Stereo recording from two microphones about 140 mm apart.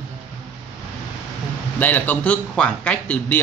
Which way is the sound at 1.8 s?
10° left (ahead or behind).